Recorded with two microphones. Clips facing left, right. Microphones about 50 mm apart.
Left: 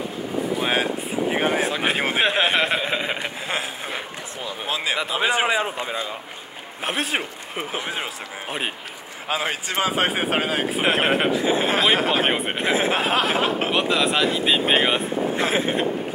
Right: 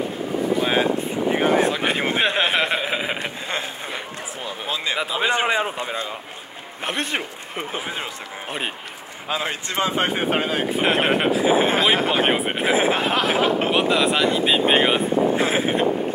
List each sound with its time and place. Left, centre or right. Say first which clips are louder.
1.3 s a sound: right 4 dB; centre
1.6 s speech: right 2 dB; centre
5.1 s a man's voice: even; centre
6.8 s a man's voice: left 1 dB; centre
10.8 s speech: right 1 dB; centre
13.0 s a man's voice: right 1 dB; centre